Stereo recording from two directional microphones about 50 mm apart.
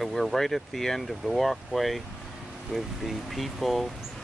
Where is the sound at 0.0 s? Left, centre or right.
Centre.